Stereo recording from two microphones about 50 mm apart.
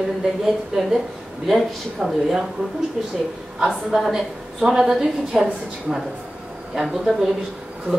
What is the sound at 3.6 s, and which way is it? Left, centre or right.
A woman's voice, centre.